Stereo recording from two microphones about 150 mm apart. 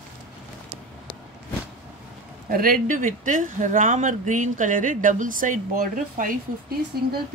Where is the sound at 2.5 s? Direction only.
70° right (ahead or behind).